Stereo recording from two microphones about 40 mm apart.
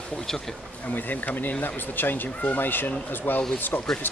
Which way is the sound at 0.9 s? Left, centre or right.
Left.